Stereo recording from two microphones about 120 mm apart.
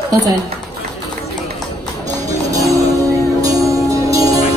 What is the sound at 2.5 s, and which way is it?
Music, 30° right (ahead or behind).